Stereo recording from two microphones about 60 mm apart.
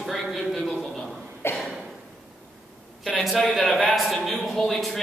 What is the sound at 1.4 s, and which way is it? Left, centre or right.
Cough, left.